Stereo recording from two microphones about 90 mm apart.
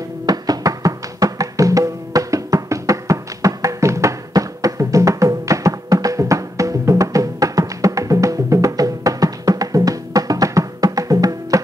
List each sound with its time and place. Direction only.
0.3 s music: 45° right (ahead or behind)